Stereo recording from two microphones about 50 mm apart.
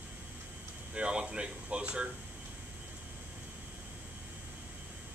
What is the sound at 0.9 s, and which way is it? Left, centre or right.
Speech, right.